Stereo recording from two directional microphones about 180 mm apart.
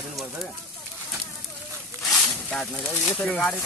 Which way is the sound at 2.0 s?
5° left (ahead or behind).